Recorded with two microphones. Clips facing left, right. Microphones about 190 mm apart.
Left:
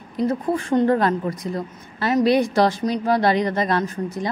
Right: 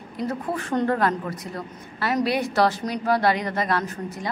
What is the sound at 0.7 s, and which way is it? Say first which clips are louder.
A woman's voice: left 4 dB; 30° left (ahead or behind).